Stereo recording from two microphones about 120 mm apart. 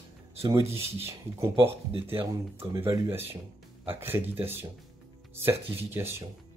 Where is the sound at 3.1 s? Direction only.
20° right (ahead or behind).